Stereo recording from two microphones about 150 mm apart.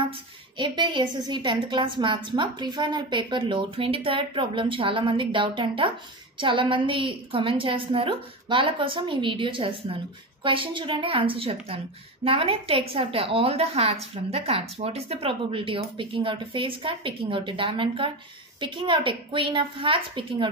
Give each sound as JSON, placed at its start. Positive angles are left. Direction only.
{"t": 0.6, "sound": "a woman's voice", "side_deg": -30}